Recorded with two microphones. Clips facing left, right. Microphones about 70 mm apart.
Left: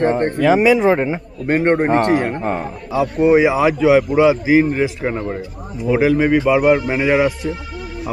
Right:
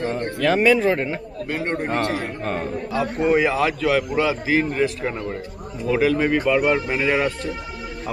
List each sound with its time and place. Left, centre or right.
0.4 s a man's voice: centre
1.5 s a man's voice: left
2.1 s a man's voice: left
2.4 s a man's voice: centre